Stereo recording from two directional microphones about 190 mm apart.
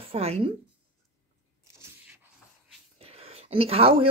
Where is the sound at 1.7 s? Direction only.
15° right (ahead or behind).